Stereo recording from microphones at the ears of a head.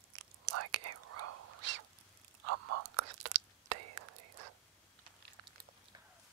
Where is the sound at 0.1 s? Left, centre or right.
Right.